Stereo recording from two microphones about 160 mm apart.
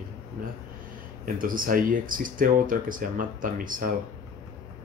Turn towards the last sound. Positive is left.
turn(degrees=-55)  # may be behind; listen again after turning